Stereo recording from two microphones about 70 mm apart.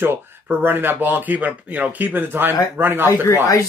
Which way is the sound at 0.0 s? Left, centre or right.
Right.